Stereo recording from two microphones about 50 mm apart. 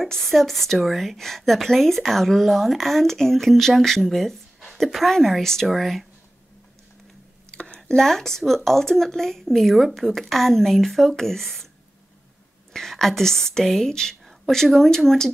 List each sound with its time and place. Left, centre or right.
0.0 s speech: centre
7.5 s a sound: centre
8.0 s speech: centre
12.7 s speech: centre